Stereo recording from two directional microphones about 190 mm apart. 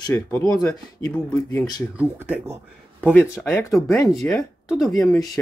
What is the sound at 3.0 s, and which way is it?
Speech, 10° left (ahead or behind).